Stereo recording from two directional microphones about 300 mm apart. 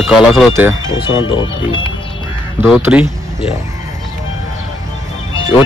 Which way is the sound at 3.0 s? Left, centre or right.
Centre.